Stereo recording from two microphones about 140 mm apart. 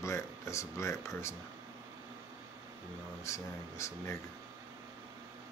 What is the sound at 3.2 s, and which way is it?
Speech, 20° left (ahead or behind).